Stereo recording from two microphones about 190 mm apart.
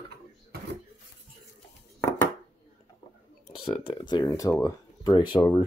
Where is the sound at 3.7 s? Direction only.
25° left (ahead or behind).